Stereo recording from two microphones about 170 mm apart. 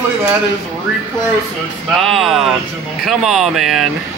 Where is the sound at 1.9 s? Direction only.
Centre (ahead or behind).